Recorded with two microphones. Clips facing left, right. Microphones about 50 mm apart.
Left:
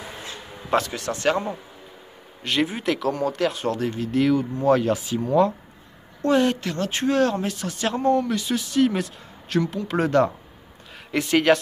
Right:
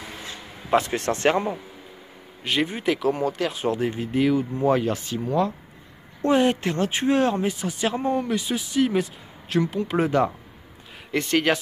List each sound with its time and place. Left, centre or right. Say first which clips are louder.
0.9 s speech: right 2 dB; right
2.4 s speech: even; centre
3.6 s speech: right 1 dB; centre
4.2 s speech: even; centre
6.2 s a woman's voice: even; right; by 11.6 s centre